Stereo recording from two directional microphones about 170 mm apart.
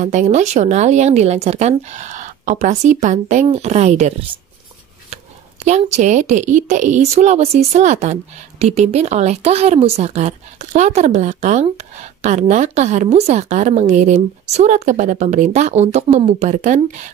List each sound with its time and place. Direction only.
0.0 s speech: 45° right (ahead or behind)
5.7 s speech: 40° right (ahead or behind)